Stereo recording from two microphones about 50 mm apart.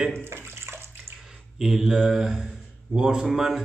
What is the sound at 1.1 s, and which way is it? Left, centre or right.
A man's voice, centre.